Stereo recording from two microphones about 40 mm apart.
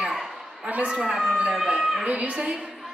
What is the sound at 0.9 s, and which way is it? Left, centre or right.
Speech, centre.